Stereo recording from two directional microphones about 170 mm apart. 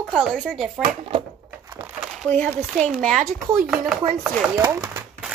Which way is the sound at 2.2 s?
10° left (ahead or behind).